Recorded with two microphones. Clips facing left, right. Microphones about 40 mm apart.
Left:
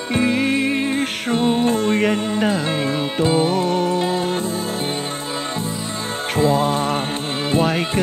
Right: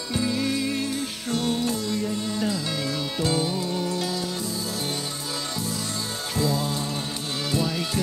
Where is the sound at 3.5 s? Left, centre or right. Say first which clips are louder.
Left 9 dB; left.